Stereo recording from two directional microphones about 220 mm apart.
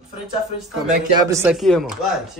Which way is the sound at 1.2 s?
10° right (ahead or behind).